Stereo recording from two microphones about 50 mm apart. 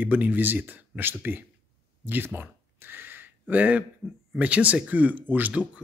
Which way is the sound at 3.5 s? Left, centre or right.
Right.